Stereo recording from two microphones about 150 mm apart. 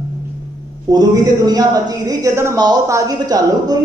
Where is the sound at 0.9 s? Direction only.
25° right (ahead or behind).